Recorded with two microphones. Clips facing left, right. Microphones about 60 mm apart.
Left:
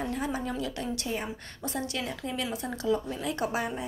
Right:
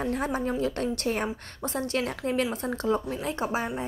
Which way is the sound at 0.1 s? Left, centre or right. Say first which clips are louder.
Right 4 dB; right.